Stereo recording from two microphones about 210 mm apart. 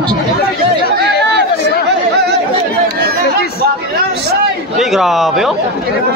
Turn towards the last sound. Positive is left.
turn(degrees=0)  # may be behind; listen again after turning